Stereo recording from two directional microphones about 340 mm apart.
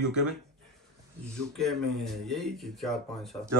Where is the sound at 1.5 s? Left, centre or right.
Centre.